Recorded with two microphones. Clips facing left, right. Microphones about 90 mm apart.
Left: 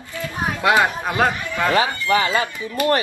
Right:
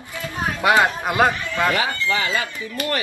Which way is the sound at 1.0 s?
10° right (ahead or behind).